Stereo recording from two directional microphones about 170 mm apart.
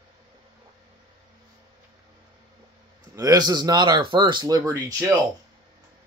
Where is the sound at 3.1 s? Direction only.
20° right (ahead or behind).